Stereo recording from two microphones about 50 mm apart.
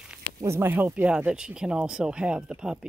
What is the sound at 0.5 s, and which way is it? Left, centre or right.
Speech, right.